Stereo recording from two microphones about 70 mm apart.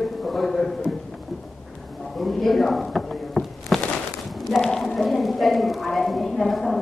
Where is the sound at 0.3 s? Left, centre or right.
Centre.